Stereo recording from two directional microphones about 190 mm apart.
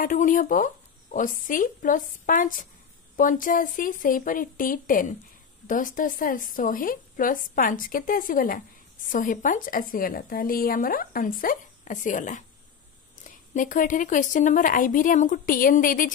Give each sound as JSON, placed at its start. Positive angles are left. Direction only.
{"t": 0.0, "sound": "a woman's voice", "side_deg": 45}